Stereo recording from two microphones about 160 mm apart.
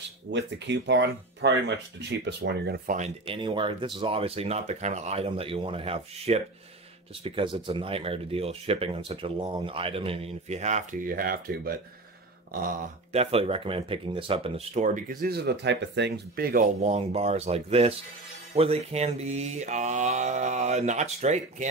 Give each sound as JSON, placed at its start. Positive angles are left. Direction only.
{"t": 0.3, "sound": "speech", "side_deg": -90}
{"t": 3.3, "sound": "speech", "side_deg": -30}
{"t": 13.1, "sound": "speech", "side_deg": -40}
{"t": 15.2, "sound": "speech", "side_deg": -85}
{"t": 16.8, "sound": "speech", "side_deg": -40}
{"t": 18.5, "sound": "mantra", "side_deg": -40}